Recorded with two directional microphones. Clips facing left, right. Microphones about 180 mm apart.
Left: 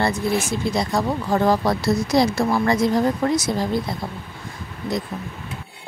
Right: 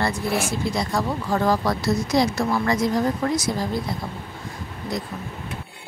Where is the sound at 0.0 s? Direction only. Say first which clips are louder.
Left 2 dB; 25° left (ahead or behind).